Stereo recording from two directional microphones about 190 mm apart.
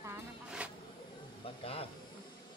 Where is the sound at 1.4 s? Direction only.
30° left (ahead or behind).